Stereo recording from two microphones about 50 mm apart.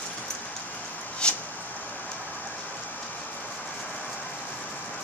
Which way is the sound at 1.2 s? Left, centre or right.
Centre.